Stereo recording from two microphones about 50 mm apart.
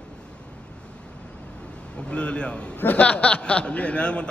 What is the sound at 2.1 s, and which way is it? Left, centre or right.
A man's voice, left.